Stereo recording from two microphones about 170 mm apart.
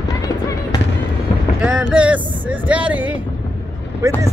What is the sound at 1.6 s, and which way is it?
Speech, centre (ahead or behind).